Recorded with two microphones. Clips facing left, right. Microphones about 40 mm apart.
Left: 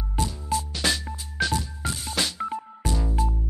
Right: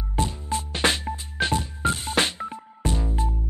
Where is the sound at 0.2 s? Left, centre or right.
Right.